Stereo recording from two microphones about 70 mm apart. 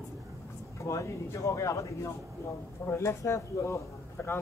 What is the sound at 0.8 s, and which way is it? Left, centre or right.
A man's voice, left.